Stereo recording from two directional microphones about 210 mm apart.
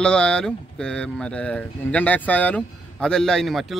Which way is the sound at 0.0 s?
5° left (ahead or behind).